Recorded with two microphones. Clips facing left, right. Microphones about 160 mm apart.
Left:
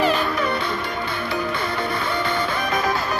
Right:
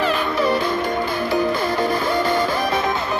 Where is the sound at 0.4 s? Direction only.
40° right (ahead or behind).